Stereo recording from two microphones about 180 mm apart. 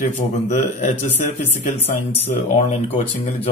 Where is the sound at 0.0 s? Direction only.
40° left (ahead or behind).